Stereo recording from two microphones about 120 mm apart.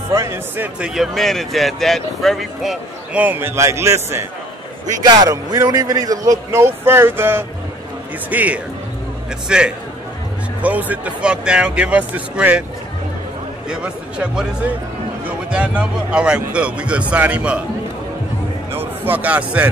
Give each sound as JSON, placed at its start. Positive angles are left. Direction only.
{"t": 0.1, "sound": "speech", "side_deg": -25}
{"t": 0.7, "sound": "speech", "side_deg": -5}
{"t": 3.2, "sound": "speech", "side_deg": -15}
{"t": 5.0, "sound": "speech", "side_deg": -35}
{"t": 13.7, "sound": "speech", "side_deg": -10}
{"t": 18.7, "sound": "speech", "side_deg": -15}